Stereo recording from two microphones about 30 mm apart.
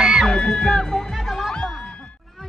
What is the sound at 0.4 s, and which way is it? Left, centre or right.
Music, left.